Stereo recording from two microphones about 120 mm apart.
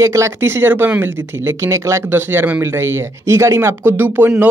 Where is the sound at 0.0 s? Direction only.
25° right (ahead or behind).